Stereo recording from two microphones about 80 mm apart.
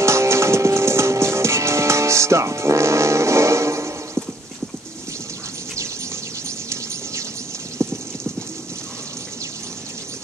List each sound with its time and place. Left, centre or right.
0.0 s music: right
7.8 s clip-clop: right